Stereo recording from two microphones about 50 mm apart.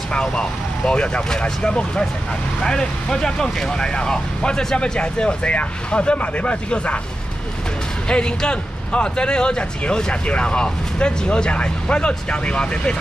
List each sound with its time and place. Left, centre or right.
0.1 s speech: centre
8.1 s speech: centre